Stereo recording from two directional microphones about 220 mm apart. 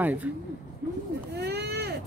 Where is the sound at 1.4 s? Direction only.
50° right (ahead or behind).